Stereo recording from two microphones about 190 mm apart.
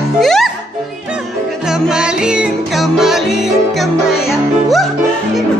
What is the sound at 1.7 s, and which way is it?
Music, 5° right (ahead or behind).